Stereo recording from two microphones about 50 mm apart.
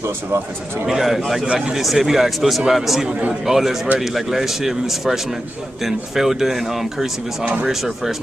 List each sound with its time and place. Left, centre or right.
0.8 s speech: centre
1.4 s speech: centre
1.8 s speech: centre